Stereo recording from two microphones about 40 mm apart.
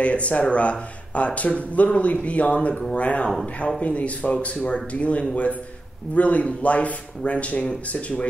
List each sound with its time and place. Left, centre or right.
0.0 s speech: left